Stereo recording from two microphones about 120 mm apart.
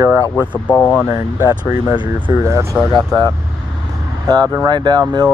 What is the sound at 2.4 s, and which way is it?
Speech, 25° right (ahead or behind).